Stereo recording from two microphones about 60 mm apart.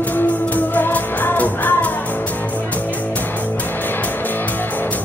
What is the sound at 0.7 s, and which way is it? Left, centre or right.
Music, left.